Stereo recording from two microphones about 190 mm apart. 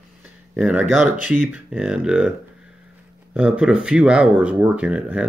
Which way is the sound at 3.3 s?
5° right (ahead or behind).